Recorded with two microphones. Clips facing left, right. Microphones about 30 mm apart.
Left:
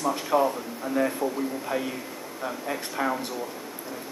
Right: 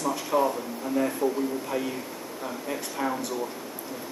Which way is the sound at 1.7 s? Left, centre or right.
Left.